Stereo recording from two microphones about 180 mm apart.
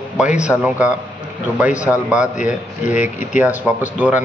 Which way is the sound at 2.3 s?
45° left (ahead or behind).